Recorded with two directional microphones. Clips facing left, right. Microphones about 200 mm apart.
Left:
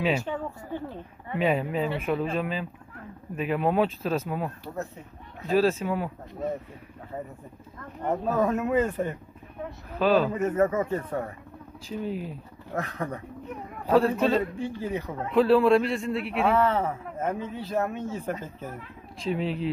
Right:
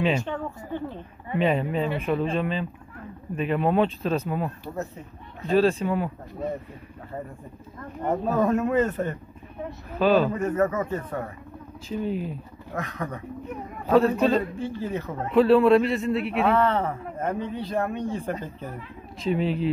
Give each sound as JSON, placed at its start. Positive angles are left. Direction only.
{"t": 0.0, "sound": "a sound", "side_deg": 5}
{"t": 1.4, "sound": "a man's voice", "side_deg": 0}
{"t": 8.3, "sound": "a man's voice", "side_deg": 0}
{"t": 10.3, "sound": "speech", "side_deg": 25}
{"t": 12.0, "sound": "a man's voice", "side_deg": 0}
{"t": 12.7, "sound": "speech", "side_deg": 30}
{"t": 13.8, "sound": "a man's voice", "side_deg": 5}
{"t": 14.6, "sound": "speech", "side_deg": 15}
{"t": 15.3, "sound": "a man's voice", "side_deg": 0}